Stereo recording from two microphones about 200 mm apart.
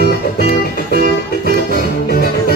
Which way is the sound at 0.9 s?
50° right (ahead or behind).